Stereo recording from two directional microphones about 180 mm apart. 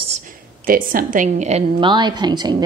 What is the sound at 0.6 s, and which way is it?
Speech, 50° right (ahead or behind).